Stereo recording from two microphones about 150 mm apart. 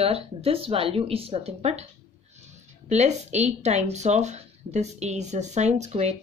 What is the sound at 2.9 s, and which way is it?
Speech, 50° right (ahead or behind).